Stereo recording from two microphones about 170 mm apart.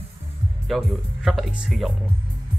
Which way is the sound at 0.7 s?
Centre (ahead or behind).